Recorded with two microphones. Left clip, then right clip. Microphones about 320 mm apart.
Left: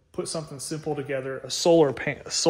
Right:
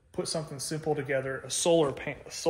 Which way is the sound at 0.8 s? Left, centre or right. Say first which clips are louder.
Even; centre.